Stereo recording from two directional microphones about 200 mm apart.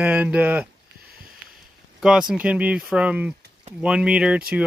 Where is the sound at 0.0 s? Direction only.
5° right (ahead or behind).